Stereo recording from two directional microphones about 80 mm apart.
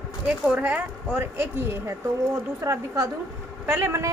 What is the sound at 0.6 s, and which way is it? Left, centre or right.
Speech, right.